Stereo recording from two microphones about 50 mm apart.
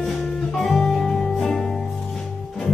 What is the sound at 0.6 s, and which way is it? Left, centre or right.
Music, centre.